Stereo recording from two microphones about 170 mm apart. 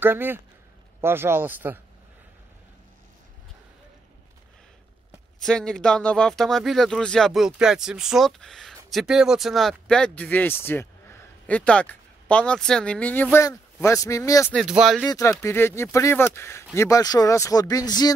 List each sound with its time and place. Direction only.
0.0 s speech: 10° right (ahead or behind)
5.4 s speech: 5° left (ahead or behind); by 14.5 s 20° left (ahead or behind)
14.5 s speech: 5° right (ahead or behind)
15.0 s speech: 20° left (ahead or behind)